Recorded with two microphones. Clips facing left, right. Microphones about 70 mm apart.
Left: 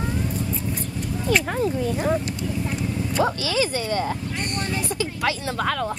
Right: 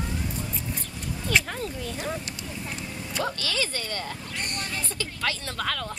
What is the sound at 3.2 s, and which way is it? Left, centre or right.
Speech, centre.